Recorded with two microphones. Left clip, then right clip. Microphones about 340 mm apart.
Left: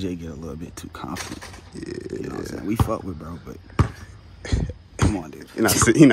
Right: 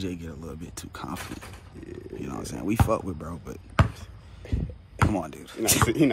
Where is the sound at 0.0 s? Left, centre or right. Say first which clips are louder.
Left 4 dB; centre.